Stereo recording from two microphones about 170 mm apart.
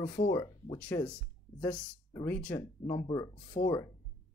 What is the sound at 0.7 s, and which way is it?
Speech, 10° left (ahead or behind).